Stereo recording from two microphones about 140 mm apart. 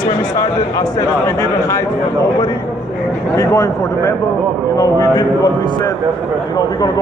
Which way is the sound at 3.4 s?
25° left (ahead or behind).